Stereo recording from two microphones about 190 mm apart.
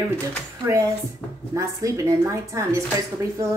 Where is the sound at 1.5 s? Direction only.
15° right (ahead or behind).